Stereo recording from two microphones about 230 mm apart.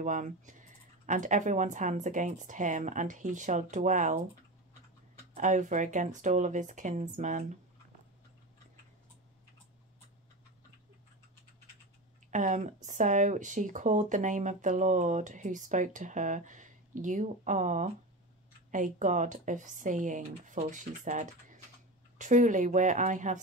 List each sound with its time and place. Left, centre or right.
0.0 s speech: right
5.3 s speech: right
12.3 s speech: right